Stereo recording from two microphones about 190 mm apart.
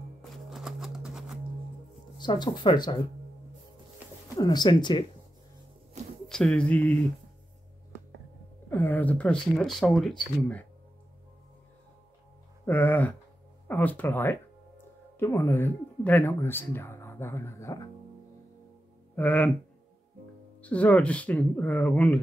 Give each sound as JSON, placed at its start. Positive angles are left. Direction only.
{"t": 0.2, "sound": "a sound", "side_deg": 0}
{"t": 2.1, "sound": "speech", "side_deg": 25}
{"t": 4.4, "sound": "speech", "side_deg": 20}
{"t": 6.2, "sound": "music", "side_deg": 5}
{"t": 8.6, "sound": "speech", "side_deg": 10}
{"t": 12.6, "sound": "speech", "side_deg": 10}
{"t": 19.1, "sound": "speech", "side_deg": 10}
{"t": 20.6, "sound": "speech", "side_deg": 5}